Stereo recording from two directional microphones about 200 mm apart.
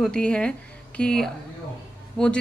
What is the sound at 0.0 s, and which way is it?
Speech, 5° left (ahead or behind).